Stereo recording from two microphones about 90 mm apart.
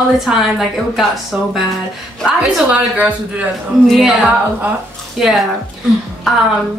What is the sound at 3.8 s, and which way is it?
A woman's voice, centre (ahead or behind).